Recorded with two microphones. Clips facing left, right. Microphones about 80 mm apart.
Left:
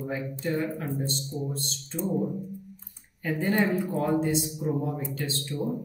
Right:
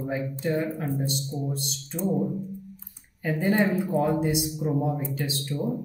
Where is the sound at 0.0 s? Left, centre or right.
Centre.